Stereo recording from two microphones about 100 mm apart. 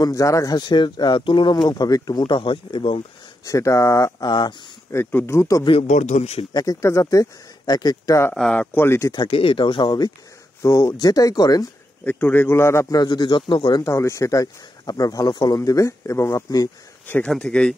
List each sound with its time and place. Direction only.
0.0 s speech: 35° left (ahead or behind); by 3.0 s 60° left (ahead or behind)
3.4 s speech: 30° left (ahead or behind)
4.3 s speech: 50° left (ahead or behind)
4.9 s a man's voice: 25° left (ahead or behind)
5.7 s a man's voice: 90° left
6.5 s speech: 35° left (ahead or behind)
8.4 s speech: 10° left (ahead or behind)
8.7 s a man's voice: 25° left (ahead or behind)
9.3 s speech: 60° left (ahead or behind)
10.6 s speech: 30° left (ahead or behind)
12.0 s a man's voice: 15° left (ahead or behind)
12.9 s speech: 40° left (ahead or behind)
13.8 s speech: 30° left (ahead or behind)
17.3 s speech: 10° left (ahead or behind)